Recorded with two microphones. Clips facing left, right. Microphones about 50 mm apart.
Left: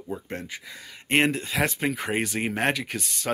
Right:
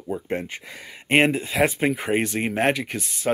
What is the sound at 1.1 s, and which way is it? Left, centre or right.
Speech, centre.